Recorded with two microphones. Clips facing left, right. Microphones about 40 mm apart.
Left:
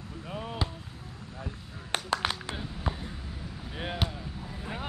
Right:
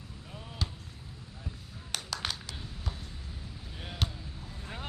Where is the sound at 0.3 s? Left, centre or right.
Left.